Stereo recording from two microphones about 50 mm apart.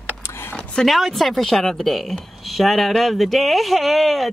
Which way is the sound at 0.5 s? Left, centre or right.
Centre.